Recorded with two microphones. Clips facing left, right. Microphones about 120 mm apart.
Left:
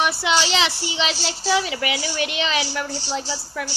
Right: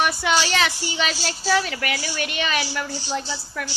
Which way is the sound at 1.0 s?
10° left (ahead or behind).